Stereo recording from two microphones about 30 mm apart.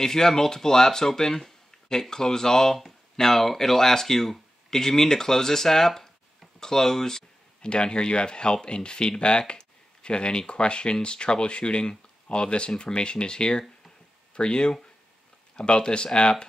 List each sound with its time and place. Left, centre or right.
0.0 s speech: centre
7.6 s speech: left